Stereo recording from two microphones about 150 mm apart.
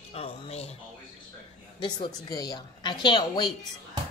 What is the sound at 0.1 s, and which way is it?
Speech, 45° left (ahead or behind).